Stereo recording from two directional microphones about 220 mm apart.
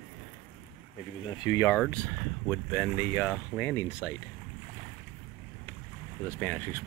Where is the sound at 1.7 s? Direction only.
5° left (ahead or behind).